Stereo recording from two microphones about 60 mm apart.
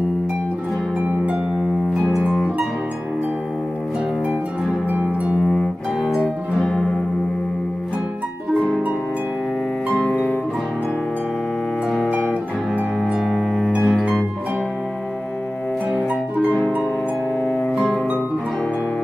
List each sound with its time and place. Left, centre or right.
6.0 s music: centre
13.3 s music: centre
17.4 s music: left
17.7 s music: centre